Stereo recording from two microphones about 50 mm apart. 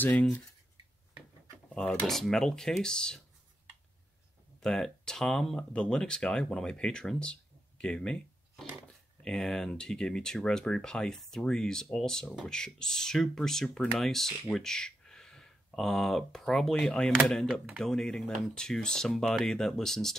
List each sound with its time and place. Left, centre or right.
0.0 s speech: left
1.7 s speech: centre
4.6 s speech: centre
9.2 s speech: centre